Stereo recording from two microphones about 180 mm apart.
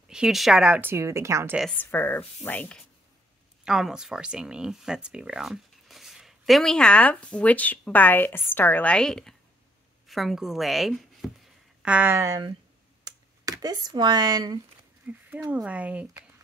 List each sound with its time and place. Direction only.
0.1 s a woman's voice: 5° right (ahead or behind)
1.6 s speech: 5° left (ahead or behind)
3.6 s a woman's voice: 5° right (ahead or behind); by 12.5 s 20° right (ahead or behind)
13.0 s a sound: 20° right (ahead or behind)
15.0 s a woman's voice: 10° right (ahead or behind)